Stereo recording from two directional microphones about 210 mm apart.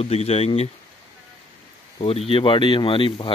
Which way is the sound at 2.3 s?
25° left (ahead or behind).